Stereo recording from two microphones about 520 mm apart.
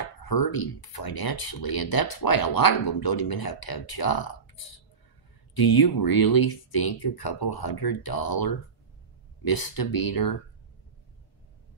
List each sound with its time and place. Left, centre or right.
0.0 s speech: left